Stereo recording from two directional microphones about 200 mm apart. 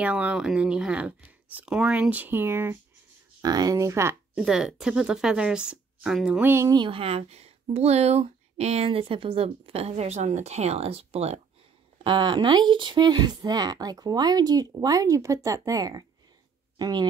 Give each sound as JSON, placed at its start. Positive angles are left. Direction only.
{"t": 0.0, "sound": "speech", "side_deg": -5}